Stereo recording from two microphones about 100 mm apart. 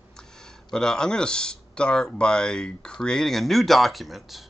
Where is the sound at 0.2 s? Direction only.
5° left (ahead or behind).